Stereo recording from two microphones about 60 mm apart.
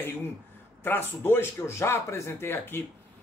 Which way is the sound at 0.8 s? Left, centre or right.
Left.